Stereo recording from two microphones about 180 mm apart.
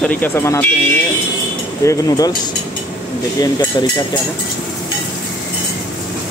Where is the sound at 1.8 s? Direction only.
20° left (ahead or behind).